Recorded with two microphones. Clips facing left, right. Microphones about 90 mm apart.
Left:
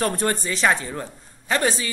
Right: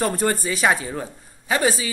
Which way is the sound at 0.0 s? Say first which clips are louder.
Right 1 dB; 5° right (ahead or behind).